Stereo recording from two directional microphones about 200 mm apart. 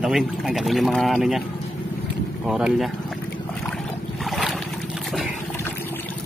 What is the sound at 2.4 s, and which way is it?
Speech, 5° right (ahead or behind).